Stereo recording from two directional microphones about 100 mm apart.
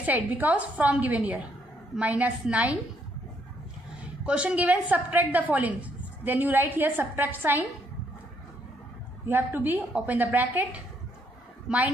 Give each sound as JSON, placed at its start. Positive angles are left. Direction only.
{"t": 0.0, "sound": "a woman's voice", "side_deg": -15}
{"t": 4.3, "sound": "a woman's voice", "side_deg": -10}
{"t": 9.3, "sound": "a woman's voice", "side_deg": -20}